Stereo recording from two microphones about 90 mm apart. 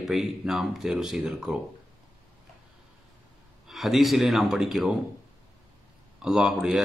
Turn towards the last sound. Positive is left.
turn(degrees=-10)  # may be behind; listen again after turning